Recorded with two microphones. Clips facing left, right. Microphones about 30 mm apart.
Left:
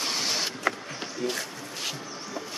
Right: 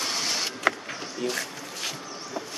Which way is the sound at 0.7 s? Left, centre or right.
Right.